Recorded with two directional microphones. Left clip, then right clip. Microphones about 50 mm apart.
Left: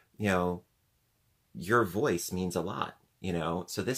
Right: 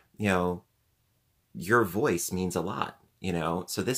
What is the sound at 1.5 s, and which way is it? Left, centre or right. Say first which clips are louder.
Speech: right 3 dB; right.